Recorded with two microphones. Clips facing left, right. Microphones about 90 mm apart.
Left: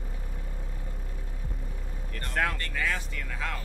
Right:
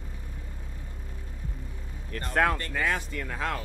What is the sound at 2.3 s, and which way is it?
Speech, 50° right (ahead or behind).